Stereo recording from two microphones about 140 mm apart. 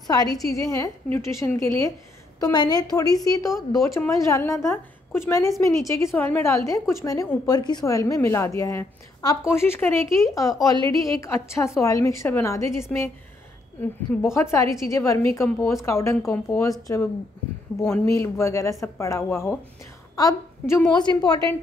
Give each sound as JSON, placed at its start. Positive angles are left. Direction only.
{"t": 0.0, "sound": "a woman's voice", "side_deg": 25}
{"t": 20.2, "sound": "a woman's voice", "side_deg": 25}